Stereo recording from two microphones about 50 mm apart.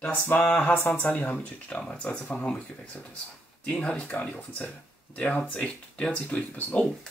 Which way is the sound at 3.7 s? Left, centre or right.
Left.